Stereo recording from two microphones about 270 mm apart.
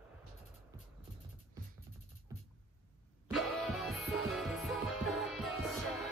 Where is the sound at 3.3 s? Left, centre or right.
Centre.